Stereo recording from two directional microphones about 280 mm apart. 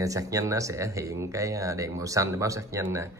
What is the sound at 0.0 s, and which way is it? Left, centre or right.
Speech, centre.